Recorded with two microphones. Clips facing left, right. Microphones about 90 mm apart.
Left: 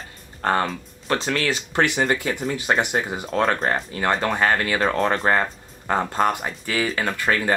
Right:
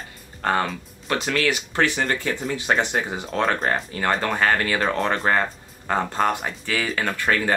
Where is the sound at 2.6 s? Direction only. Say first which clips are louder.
Even; 15° left (ahead or behind).